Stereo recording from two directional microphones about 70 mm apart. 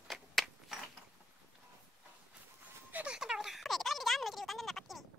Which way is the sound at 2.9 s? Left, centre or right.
Centre.